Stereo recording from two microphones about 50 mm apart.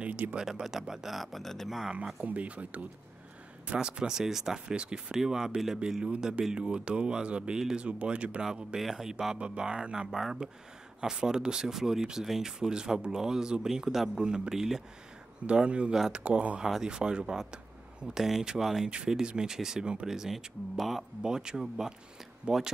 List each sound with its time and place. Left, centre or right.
0.0 s speech: right
0.4 s speech: centre
2.2 s speech: right; by 4.6 s centre
4.6 s speech: centre
7.8 s speech: right
8.7 s speech: centre
9.4 s speech: centre
15.4 s speech: right
16.6 s speech: centre
16.9 s speech: centre
21.2 s speech: centre